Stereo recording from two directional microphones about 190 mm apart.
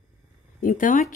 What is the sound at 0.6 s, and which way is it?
Speech, 45° left (ahead or behind).